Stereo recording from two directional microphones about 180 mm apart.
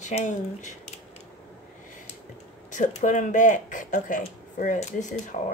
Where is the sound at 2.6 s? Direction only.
45° left (ahead or behind).